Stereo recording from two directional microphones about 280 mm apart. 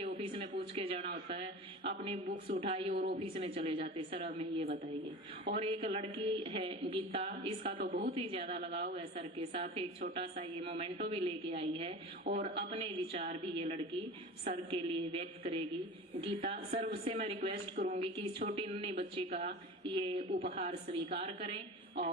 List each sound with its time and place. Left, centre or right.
0.2 s a woman's voice: centre
2.9 s a woman's voice: right
3.2 s a woman's voice: centre
5.5 s a woman's voice: right
7.8 s a woman's voice: right
8.3 s a woman's voice: centre